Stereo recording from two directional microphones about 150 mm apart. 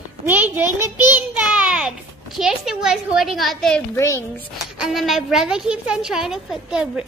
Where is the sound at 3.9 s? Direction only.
20° left (ahead or behind).